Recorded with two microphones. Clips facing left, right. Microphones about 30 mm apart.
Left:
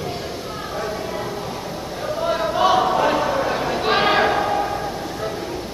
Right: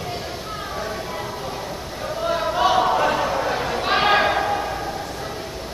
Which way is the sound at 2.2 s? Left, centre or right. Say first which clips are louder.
Left 1 dB; centre.